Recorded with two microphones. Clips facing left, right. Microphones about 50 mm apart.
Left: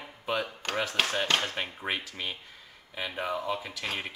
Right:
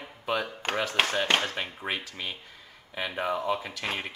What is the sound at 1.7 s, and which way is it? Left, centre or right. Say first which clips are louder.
Speech: even; centre.